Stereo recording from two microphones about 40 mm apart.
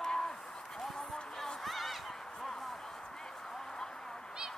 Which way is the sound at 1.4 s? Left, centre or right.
Centre.